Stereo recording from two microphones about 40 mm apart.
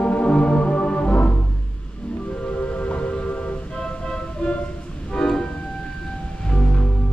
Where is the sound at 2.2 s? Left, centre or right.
Left.